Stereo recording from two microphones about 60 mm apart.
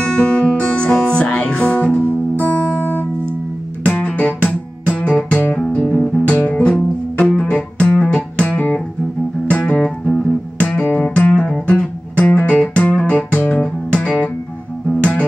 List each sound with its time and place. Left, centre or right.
0.0 s music: centre
6.3 s music: left
9.8 s music: centre
10.6 s music: left